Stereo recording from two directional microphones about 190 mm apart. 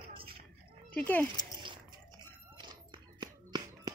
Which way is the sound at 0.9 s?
10° left (ahead or behind).